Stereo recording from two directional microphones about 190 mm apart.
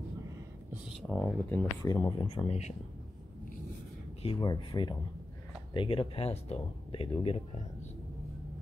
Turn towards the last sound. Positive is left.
turn(degrees=30)  # may be behind; listen again after turning